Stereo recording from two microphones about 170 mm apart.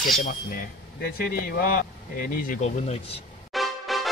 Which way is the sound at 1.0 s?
65° left (ahead or behind).